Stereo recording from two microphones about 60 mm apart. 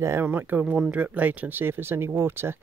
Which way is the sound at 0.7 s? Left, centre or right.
Right.